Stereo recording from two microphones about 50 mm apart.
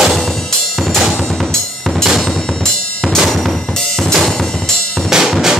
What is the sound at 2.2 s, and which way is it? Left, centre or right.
Drum, centre.